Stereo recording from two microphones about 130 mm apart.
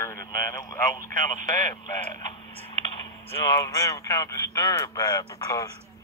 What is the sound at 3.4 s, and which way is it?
Speech, 30° left (ahead or behind).